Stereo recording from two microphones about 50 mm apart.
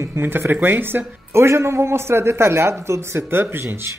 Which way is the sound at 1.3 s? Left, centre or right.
Right.